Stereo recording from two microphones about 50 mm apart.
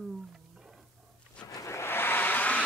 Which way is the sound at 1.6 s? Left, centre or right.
Left.